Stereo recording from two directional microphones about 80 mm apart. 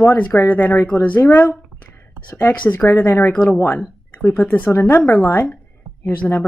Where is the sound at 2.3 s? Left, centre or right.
Left.